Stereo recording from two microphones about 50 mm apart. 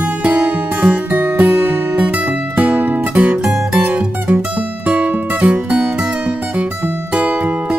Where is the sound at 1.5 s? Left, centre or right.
Right.